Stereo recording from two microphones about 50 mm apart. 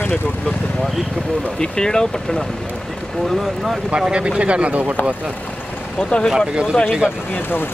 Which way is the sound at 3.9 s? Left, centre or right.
Centre.